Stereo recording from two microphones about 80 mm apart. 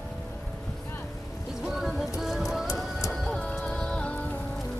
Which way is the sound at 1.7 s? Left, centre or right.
Centre.